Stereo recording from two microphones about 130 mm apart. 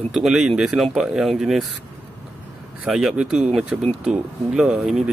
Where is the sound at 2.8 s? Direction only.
5° right (ahead or behind).